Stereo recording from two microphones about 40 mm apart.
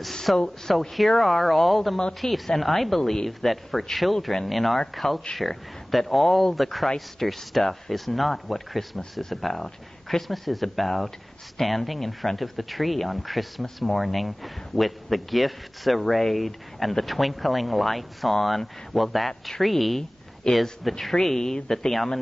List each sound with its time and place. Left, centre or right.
0.1 s a sound: centre
0.7 s speech: centre
20.5 s speech: centre